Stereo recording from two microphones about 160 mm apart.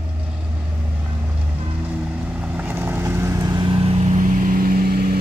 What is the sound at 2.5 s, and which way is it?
Vehicle, 10° right (ahead or behind).